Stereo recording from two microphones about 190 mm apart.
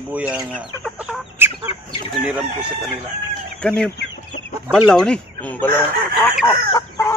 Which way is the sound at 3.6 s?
5° left (ahead or behind).